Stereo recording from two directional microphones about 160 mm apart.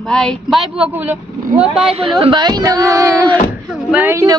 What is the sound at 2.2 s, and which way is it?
Speech, 30° right (ahead or behind).